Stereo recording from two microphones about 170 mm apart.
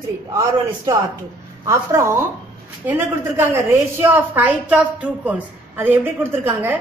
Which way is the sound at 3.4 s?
15° right (ahead or behind).